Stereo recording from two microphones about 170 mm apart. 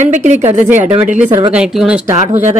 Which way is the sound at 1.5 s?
5° right (ahead or behind).